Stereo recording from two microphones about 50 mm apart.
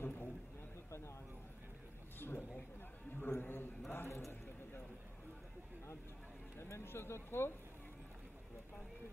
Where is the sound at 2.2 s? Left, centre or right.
Left.